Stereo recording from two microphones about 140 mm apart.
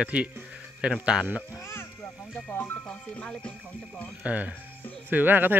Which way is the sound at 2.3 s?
15° left (ahead or behind).